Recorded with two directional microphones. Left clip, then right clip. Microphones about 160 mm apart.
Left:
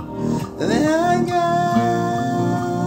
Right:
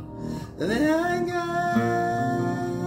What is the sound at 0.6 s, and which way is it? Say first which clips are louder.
Music: left 5 dB; 25° right (ahead or behind).